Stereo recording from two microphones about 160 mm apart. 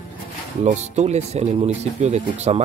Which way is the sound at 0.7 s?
45° right (ahead or behind).